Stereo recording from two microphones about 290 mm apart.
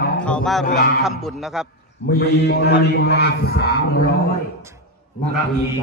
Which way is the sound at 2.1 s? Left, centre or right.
Left.